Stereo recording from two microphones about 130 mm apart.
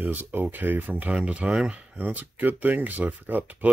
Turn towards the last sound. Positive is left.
turn(degrees=-15)  # may be behind; listen again after turning